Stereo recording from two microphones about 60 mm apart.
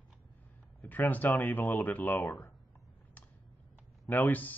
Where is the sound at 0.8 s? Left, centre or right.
Left.